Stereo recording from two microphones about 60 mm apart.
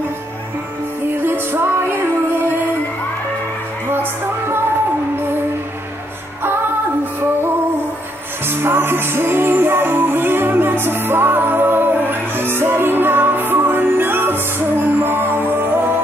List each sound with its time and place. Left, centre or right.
1.2 s music: right
3.9 s music: right
8.5 s music: right